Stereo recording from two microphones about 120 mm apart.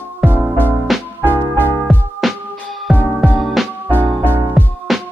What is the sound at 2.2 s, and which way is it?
Music, centre (ahead or behind).